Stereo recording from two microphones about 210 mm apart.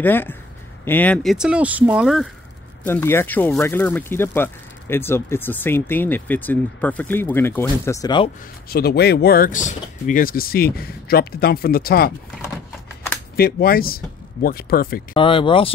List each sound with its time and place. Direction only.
0.0 s speech: 10° left (ahead or behind)
2.8 s speech: 10° left (ahead or behind)
8.6 s speech: 50° left (ahead or behind)
13.4 s speech: 45° left (ahead or behind)
15.1 s speech: 25° left (ahead or behind)